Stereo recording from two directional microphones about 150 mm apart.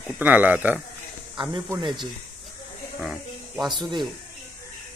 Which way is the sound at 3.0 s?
Centre (ahead or behind).